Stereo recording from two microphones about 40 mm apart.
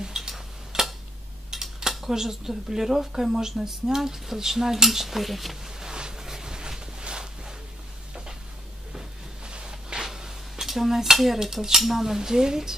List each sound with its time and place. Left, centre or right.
0.0 s tick-tock: centre
0.3 s tick-tock: centre
1.5 s cutlery: centre
9.4 s cutlery: right; by 11.3 s centre
11.4 s speech: centre